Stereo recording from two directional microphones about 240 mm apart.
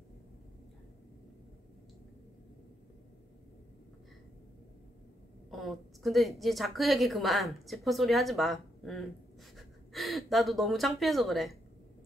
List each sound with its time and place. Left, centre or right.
5.5 s a woman's voice: centre